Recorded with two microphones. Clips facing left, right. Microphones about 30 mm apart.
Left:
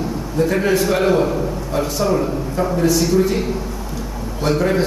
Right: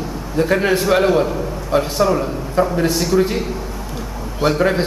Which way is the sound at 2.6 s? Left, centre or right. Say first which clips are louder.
Right 4 dB; right.